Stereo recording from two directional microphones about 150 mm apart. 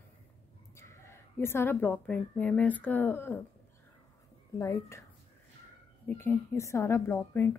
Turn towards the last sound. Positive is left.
turn(degrees=15)  # may be behind; listen again after turning